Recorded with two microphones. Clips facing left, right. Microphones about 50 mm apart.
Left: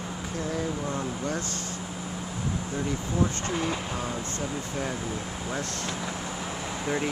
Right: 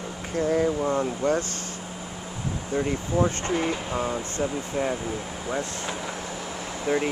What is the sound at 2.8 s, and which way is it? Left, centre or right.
Speech, right.